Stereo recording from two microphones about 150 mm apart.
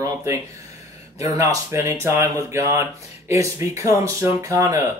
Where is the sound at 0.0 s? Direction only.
20° right (ahead or behind).